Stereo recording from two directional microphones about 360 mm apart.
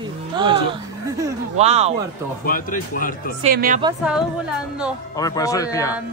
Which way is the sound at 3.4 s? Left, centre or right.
Right.